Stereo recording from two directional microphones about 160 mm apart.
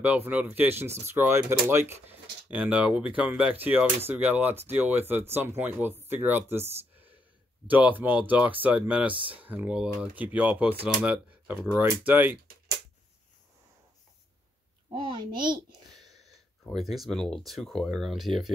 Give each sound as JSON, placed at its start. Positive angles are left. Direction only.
{"t": 0.0, "sound": "speech", "side_deg": -10}
{"t": 14.9, "sound": "a woman's voice", "side_deg": -30}
{"t": 16.9, "sound": "speech", "side_deg": 0}